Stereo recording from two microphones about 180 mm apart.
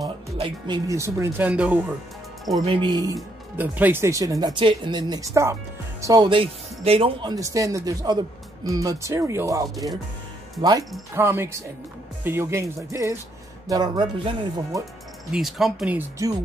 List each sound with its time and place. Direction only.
0.4 s speech: 20° right (ahead or behind)
2.6 s speech: 30° right (ahead or behind)
3.5 s speech: 10° right (ahead or behind); by 14.3 s 25° right (ahead or behind)
15.3 s speech: centre (ahead or behind)